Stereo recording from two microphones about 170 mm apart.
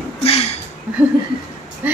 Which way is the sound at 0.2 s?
35° left (ahead or behind).